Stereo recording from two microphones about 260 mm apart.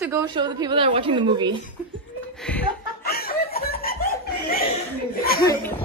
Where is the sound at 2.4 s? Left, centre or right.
Centre.